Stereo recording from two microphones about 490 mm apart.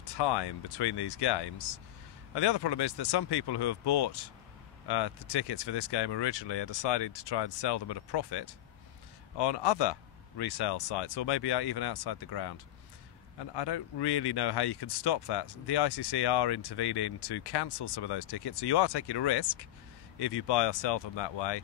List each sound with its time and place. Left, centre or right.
0.0 s speech: left